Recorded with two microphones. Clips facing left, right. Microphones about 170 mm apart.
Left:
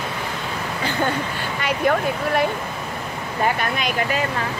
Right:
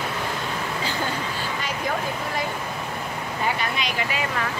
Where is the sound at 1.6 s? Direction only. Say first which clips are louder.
Left 9 dB; 65° left (ahead or behind).